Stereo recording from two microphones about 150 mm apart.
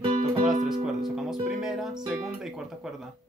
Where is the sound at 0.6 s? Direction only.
5° right (ahead or behind).